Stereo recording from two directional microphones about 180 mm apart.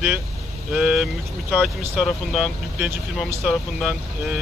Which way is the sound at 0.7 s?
5° right (ahead or behind).